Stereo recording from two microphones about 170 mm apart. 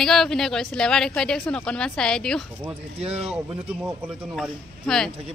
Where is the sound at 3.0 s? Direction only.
35° right (ahead or behind).